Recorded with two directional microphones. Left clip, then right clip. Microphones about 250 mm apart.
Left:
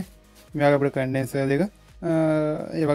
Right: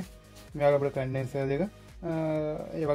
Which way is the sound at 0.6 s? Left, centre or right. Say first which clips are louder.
Left 5 dB; left.